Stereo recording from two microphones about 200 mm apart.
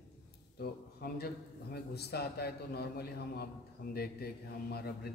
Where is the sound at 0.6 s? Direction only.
50° left (ahead or behind).